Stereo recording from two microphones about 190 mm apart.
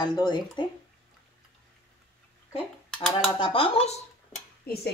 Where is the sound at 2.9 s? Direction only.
5° left (ahead or behind).